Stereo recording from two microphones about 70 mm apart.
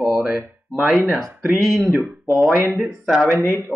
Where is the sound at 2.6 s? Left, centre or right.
Right.